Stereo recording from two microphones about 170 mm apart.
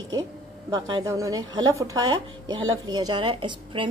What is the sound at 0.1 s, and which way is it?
A woman's voice, 20° right (ahead or behind).